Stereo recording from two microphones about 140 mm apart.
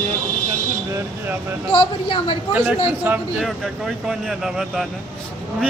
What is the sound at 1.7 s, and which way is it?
Speech, 40° left (ahead or behind).